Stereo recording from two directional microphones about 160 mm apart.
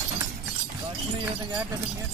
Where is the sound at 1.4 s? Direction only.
20° right (ahead or behind).